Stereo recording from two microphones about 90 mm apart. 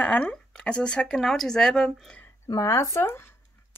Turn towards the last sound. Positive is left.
turn(degrees=25)  # may be behind; listen again after turning